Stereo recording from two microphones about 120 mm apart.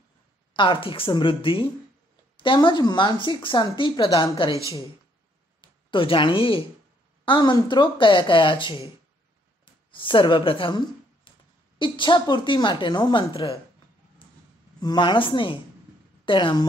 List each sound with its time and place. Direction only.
0.5 s speech: 45° left (ahead or behind)
4.6 s speech: 25° right (ahead or behind)
5.6 s speech: 45° left (ahead or behind)
7.2 s speech: 35° left (ahead or behind)
9.8 s speech: 45° left (ahead or behind)
14.8 s speech: 35° left (ahead or behind)